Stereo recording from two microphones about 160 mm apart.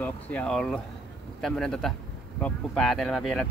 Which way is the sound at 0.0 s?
10° left (ahead or behind).